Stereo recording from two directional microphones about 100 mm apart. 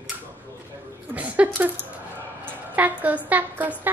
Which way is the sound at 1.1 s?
15° right (ahead or behind).